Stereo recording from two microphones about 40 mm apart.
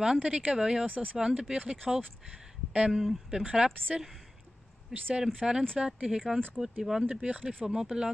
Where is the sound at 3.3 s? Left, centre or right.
Centre.